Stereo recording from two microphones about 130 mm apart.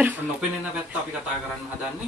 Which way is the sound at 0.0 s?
10° right (ahead or behind).